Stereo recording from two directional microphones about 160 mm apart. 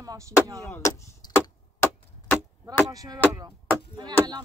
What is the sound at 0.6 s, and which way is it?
Speech, 15° left (ahead or behind).